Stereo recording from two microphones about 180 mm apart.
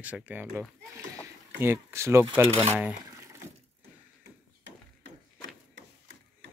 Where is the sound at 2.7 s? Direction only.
10° right (ahead or behind).